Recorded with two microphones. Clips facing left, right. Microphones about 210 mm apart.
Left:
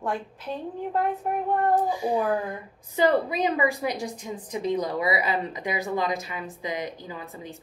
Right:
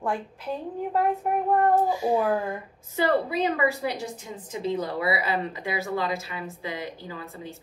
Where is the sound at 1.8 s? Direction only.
15° left (ahead or behind).